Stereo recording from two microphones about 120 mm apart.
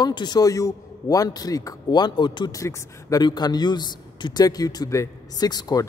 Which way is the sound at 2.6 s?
25° left (ahead or behind).